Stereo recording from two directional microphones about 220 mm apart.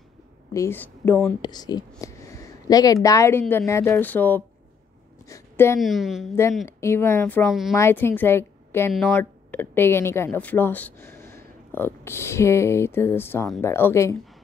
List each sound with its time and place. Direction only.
0.5 s a woman's voice: 10° left (ahead or behind)
1.4 s a woman's voice: 20° left (ahead or behind)
5.2 s a sound: 15° left (ahead or behind)
5.8 s a woman's voice: centre (ahead or behind)
6.8 s a woman's voice: 10° left (ahead or behind)